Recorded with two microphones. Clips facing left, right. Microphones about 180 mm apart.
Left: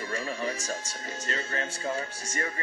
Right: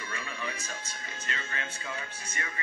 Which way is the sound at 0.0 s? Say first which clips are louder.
Left 7 dB; 40° left (ahead or behind).